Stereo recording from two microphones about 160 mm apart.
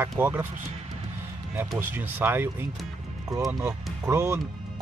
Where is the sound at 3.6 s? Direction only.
15° right (ahead or behind).